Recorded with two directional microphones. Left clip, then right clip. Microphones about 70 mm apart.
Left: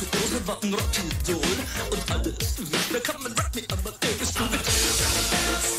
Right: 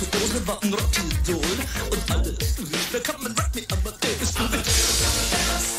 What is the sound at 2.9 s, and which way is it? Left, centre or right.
Music, centre.